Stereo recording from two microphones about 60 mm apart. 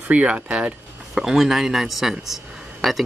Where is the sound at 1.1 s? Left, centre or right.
Centre.